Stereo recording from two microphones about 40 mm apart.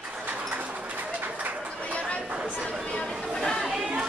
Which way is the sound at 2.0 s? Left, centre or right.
Left.